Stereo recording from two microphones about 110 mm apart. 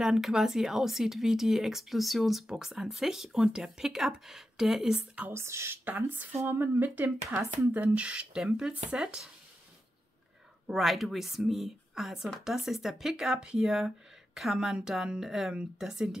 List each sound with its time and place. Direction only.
0.0 s speech: 5° right (ahead or behind)
5.3 s speech: 25° right (ahead or behind); by 9.3 s 5° right (ahead or behind)
10.7 s speech: centre (ahead or behind)